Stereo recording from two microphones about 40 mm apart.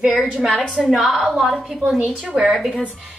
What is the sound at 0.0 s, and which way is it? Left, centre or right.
A woman's voice, centre.